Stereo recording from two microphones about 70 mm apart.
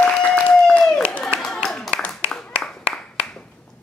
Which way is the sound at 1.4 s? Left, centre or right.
Centre.